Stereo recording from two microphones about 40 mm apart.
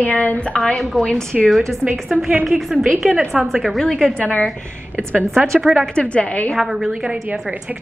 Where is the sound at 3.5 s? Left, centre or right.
Centre.